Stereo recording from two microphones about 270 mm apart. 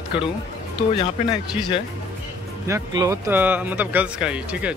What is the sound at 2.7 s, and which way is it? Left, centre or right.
Speech, centre.